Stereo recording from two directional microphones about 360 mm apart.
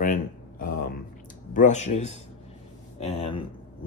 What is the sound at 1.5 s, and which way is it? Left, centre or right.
Speech, centre.